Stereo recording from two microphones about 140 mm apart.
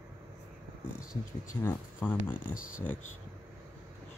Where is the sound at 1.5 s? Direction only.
15° left (ahead or behind).